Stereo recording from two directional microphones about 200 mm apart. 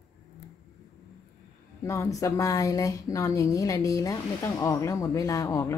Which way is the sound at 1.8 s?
15° left (ahead or behind).